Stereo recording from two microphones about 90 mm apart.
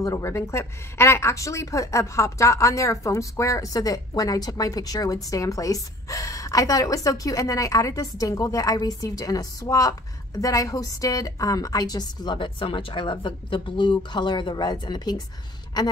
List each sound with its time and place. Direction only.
0.0 s a woman's voice: 35° left (ahead or behind); by 15.9 s 50° left (ahead or behind)